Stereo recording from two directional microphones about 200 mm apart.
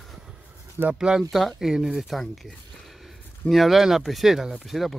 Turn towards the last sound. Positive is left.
turn(degrees=0)  # may be behind; listen again after turning